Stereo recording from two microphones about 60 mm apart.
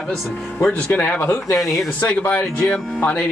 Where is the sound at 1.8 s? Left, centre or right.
Left.